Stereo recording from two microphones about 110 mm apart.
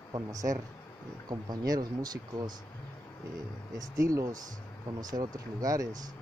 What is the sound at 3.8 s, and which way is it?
Speech, 30° right (ahead or behind).